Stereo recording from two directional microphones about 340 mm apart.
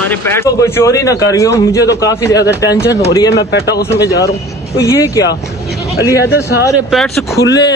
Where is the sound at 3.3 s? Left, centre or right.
Left.